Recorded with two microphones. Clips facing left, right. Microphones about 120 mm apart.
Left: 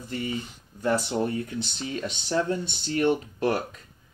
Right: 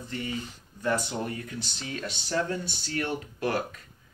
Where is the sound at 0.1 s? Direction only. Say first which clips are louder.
Left 3 dB; 25° left (ahead or behind).